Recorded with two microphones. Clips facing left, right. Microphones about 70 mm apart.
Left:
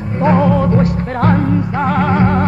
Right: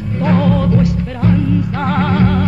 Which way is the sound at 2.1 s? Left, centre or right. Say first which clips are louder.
Left 1 dB; left.